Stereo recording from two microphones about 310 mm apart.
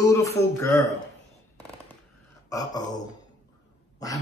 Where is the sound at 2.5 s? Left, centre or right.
Centre.